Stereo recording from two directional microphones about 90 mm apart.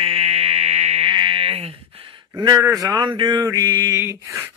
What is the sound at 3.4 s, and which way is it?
Speech, 40° right (ahead or behind).